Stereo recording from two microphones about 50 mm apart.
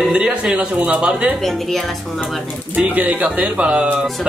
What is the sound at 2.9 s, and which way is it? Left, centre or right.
Speech, right.